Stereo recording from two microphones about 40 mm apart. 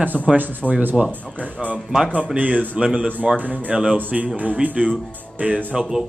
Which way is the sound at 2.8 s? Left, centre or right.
Right.